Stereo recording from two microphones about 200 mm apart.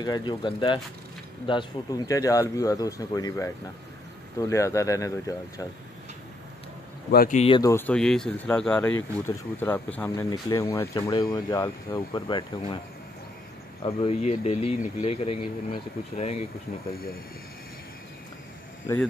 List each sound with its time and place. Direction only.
0.0 s speech: 20° left (ahead or behind)
7.1 s speech: 50° left (ahead or behind)
7.3 s speech: 25° left (ahead or behind)
7.6 s speech: 10° left (ahead or behind)
9.9 s speech: 10° left (ahead or behind)
13.8 s speech: 30° left (ahead or behind)
16.9 s speech: 45° left (ahead or behind)